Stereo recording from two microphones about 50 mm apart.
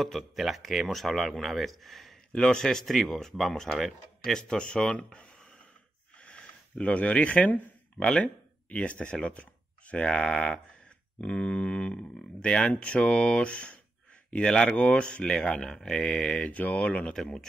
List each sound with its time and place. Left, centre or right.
0.0 s speech: centre
2.3 s speech: centre
6.1 s a sound: left
8.2 s speech: left